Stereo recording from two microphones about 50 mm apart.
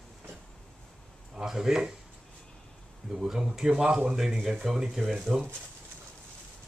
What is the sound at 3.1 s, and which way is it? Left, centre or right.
A man's voice, centre.